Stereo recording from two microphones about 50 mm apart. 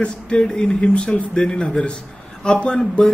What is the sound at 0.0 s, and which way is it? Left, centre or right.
A man's voice, left.